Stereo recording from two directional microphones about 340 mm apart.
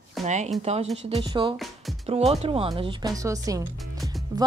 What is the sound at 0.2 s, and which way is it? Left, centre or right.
Speech, centre.